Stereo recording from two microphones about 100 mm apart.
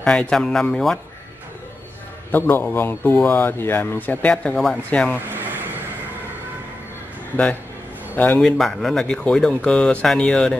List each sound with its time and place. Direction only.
0.0 s speech: 10° left (ahead or behind)
2.3 s speech: 20° left (ahead or behind)
5.3 s vehicle: 20° right (ahead or behind)
8.4 s speech: centre (ahead or behind)